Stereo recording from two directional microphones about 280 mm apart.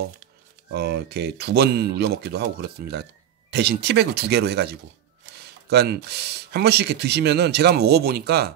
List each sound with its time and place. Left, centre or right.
0.7 s speech: right